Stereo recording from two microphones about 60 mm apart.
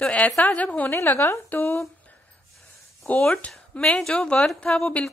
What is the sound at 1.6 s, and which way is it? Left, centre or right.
Speech, left.